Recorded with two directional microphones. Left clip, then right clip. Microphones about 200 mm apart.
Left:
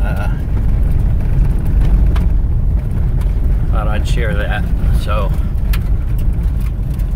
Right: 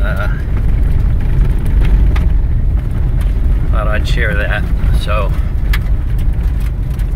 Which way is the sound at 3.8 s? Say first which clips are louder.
Right 4 dB; 15° left (ahead or behind).